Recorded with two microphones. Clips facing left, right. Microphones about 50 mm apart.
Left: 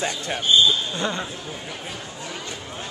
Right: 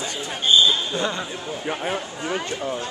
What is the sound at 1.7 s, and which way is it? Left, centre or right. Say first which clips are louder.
Speech: right 8 dB; right.